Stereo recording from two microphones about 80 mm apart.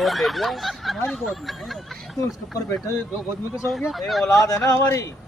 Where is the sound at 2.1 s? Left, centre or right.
Left.